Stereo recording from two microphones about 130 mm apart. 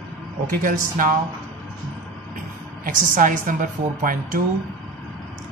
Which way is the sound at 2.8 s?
90° right.